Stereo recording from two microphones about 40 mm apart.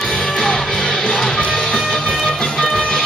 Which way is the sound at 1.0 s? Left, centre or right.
Centre.